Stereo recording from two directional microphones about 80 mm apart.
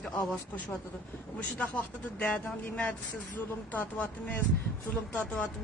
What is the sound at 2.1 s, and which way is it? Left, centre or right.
Speech, centre.